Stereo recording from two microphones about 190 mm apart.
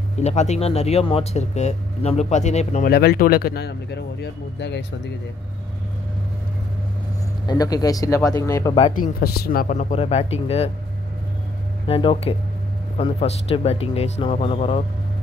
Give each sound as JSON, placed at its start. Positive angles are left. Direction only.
{"t": 0.2, "sound": "speech", "side_deg": 35}
{"t": 2.9, "sound": "speech", "side_deg": 55}
{"t": 7.4, "sound": "speech", "side_deg": 20}
{"t": 9.0, "sound": "speech", "side_deg": 55}
{"t": 11.9, "sound": "speech", "side_deg": 30}